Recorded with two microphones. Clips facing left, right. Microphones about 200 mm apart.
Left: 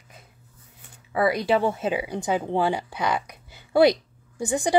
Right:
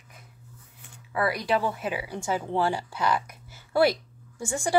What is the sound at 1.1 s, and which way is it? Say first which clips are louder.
Speech: left 4 dB; 20° left (ahead or behind).